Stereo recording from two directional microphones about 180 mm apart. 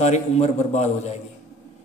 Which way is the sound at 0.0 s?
40° left (ahead or behind).